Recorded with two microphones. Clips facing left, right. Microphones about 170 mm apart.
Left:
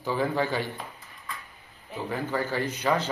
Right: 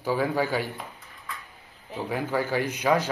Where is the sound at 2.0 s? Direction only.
10° right (ahead or behind).